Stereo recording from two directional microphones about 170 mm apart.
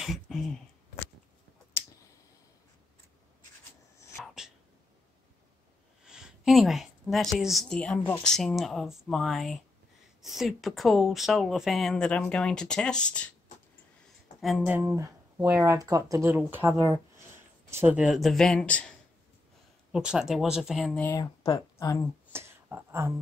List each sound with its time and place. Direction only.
0.0 s a sound: centre (ahead or behind)
6.0 s a woman's voice: 5° right (ahead or behind)
14.4 s speech: 5° right (ahead or behind)
19.9 s speech: 5° right (ahead or behind)
21.2 s speech: 20° left (ahead or behind)
22.3 s a sound: 15° right (ahead or behind)